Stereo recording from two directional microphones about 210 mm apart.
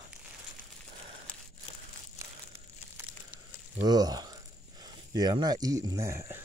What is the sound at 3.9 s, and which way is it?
Speech, 20° right (ahead or behind).